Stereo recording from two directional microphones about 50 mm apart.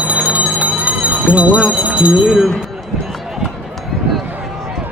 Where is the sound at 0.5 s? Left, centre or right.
Right.